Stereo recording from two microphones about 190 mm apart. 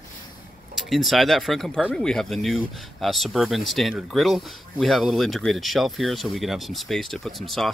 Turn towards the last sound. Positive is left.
turn(degrees=0)  # may be behind; listen again after turning